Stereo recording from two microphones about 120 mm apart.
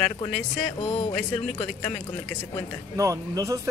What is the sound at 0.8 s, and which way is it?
Speech, 45° left (ahead or behind).